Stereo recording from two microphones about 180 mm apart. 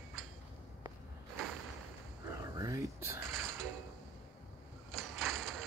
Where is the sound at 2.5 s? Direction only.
20° right (ahead or behind).